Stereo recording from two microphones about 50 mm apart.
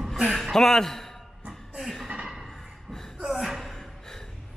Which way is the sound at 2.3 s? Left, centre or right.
Centre.